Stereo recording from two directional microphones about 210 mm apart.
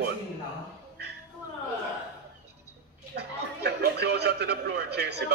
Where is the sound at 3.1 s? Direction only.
50° right (ahead or behind).